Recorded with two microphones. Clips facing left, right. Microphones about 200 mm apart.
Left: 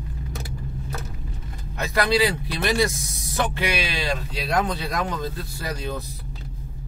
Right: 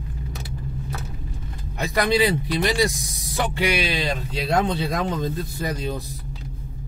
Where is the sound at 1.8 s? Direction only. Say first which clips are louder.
Right 1 dB; 20° right (ahead or behind).